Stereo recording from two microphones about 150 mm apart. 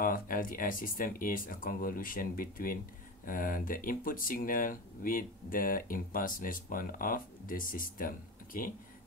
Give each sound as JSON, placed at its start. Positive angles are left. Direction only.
{"t": 0.0, "sound": "speech", "side_deg": 70}